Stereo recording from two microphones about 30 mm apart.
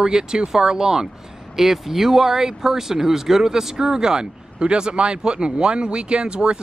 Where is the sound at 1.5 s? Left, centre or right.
Centre.